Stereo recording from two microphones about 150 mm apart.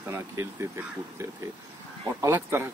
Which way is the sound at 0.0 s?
15° right (ahead or behind).